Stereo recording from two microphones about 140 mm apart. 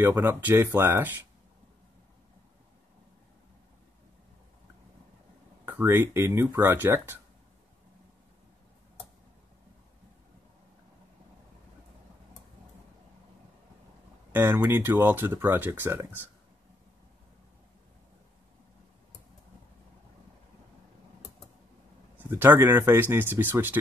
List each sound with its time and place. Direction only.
0.0 s speech: 15° right (ahead or behind)
5.7 s speech: 15° right (ahead or behind)
14.3 s speech: 15° right (ahead or behind)
22.2 s speech: 15° right (ahead or behind)